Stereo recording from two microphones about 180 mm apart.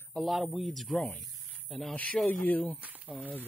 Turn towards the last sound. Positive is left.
turn(degrees=0)  # may be behind; listen again after turning